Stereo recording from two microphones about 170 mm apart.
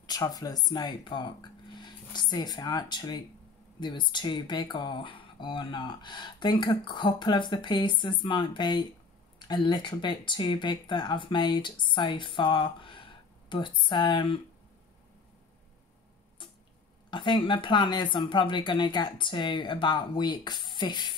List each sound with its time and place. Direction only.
0.0 s speech: 20° left (ahead or behind)
17.1 s speech: 30° left (ahead or behind)